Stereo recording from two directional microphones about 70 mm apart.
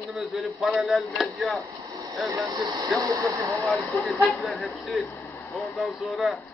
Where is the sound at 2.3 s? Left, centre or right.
Right.